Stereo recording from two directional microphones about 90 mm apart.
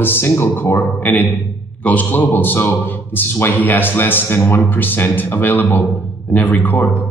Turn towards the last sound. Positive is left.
turn(degrees=20)  # may be behind; listen again after turning